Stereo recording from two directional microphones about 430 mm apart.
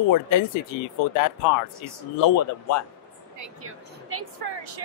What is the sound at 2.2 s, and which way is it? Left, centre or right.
Speech, left.